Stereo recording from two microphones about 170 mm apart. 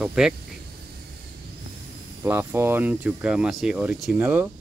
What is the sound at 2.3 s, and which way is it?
Speech, 15° right (ahead or behind).